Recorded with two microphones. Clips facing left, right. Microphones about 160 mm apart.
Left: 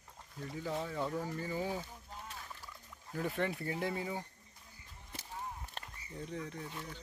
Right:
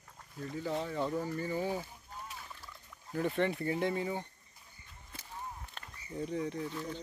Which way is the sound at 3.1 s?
5° left (ahead or behind).